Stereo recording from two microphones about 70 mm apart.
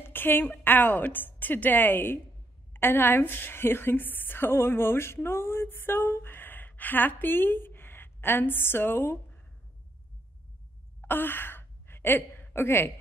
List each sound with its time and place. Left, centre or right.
0.0 s a woman's voice: left
11.0 s gasp: left